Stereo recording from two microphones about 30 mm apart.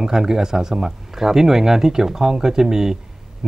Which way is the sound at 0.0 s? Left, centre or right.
Centre.